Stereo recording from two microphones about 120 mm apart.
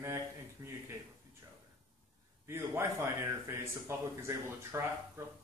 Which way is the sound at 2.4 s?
20° right (ahead or behind).